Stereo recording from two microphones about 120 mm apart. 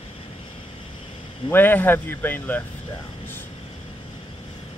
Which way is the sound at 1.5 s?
15° left (ahead or behind).